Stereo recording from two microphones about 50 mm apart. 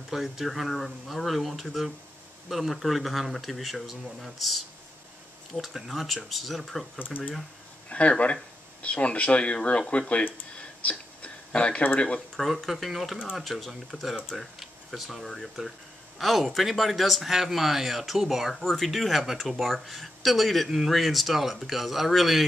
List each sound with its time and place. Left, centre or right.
0.1 s a man's voice: centre
7.9 s speech: left
10.6 s a sound: left
12.4 s a man's voice: centre